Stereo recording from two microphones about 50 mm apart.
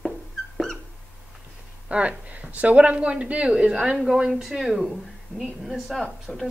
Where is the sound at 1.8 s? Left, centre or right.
Right.